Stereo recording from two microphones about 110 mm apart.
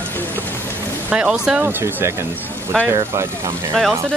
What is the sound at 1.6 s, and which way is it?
Speech, 25° right (ahead or behind).